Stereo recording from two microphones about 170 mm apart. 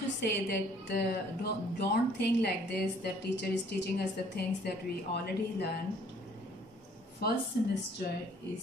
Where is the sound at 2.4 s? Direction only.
70° left (ahead or behind).